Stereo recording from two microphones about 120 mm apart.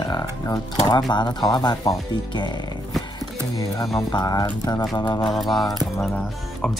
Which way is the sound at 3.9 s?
35° left (ahead or behind).